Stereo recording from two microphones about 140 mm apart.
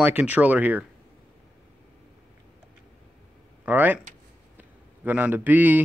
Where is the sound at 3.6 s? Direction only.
10° right (ahead or behind).